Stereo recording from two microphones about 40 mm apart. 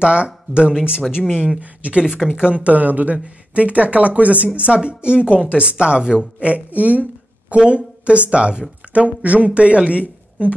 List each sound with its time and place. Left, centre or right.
0.0 s speech: right
2.0 s speech: centre
2.6 s speech: right
6.5 s speech: right